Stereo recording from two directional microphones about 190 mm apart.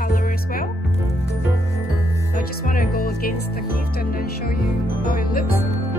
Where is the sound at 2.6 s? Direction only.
45° left (ahead or behind).